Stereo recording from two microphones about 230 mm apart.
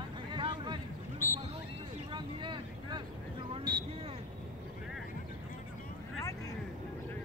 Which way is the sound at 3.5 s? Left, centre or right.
Right.